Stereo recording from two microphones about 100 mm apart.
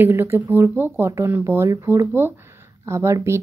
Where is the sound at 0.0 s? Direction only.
20° right (ahead or behind).